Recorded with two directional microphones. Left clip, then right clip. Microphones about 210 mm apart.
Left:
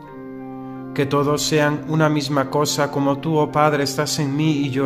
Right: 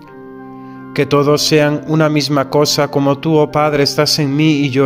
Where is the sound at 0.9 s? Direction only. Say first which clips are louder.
Right 7 dB; 35° right (ahead or behind).